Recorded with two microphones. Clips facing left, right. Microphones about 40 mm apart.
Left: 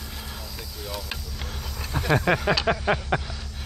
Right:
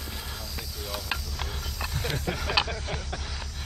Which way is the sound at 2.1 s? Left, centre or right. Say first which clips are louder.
Left 16 dB; left.